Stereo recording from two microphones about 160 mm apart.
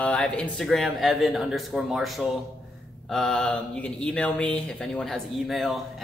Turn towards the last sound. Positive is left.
turn(degrees=0)  # may be behind; listen again after turning